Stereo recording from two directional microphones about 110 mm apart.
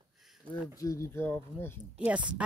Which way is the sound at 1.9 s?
10° right (ahead or behind).